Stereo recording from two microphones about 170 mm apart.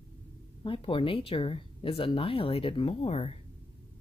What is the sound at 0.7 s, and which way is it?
Speech, 30° left (ahead or behind).